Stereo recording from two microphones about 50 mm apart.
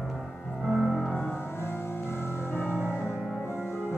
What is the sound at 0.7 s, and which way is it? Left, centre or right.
Music, centre.